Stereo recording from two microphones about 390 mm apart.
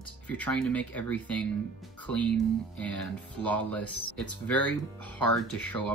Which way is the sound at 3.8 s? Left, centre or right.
Left.